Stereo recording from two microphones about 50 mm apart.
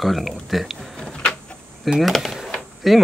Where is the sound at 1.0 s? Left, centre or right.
Centre.